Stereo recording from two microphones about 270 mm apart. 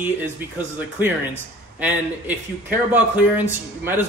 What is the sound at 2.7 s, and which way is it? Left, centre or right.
A man's voice, centre.